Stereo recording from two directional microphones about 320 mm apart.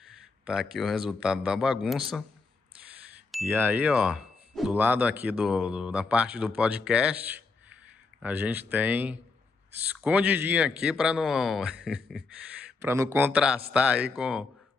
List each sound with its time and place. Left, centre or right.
0.5 s speech: centre
3.3 s speech: centre